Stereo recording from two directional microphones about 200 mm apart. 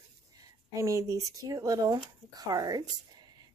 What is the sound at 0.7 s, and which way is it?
Speech, 15° right (ahead or behind).